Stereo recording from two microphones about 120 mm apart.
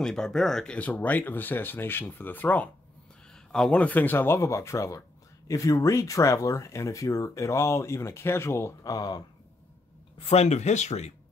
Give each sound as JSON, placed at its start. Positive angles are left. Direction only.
{"t": 0.0, "sound": "speech", "side_deg": 5}
{"t": 10.1, "sound": "speech", "side_deg": 60}